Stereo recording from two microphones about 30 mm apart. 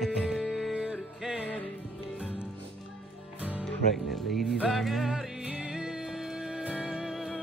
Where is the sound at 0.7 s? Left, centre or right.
Centre.